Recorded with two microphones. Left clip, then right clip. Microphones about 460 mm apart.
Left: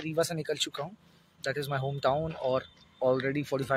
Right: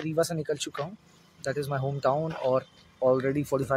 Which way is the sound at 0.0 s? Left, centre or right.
Left.